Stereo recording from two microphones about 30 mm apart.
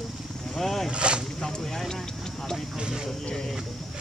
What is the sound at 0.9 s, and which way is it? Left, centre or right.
Speech, right.